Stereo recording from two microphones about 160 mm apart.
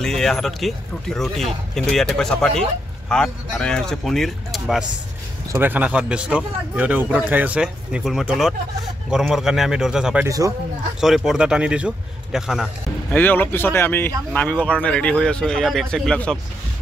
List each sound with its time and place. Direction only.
0.0 s speech: 5° left (ahead or behind)
5.5 s speech: 10° right (ahead or behind)
10.2 s a man's voice: 20° right (ahead or behind)
11.0 s speech: centre (ahead or behind)
13.1 s speech: 10° left (ahead or behind)